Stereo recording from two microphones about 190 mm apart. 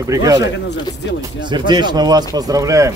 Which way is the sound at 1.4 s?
25° right (ahead or behind).